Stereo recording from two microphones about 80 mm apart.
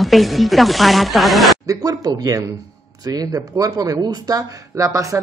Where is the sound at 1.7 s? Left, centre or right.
Right.